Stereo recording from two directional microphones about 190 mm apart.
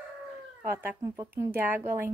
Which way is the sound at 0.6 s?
10° right (ahead or behind).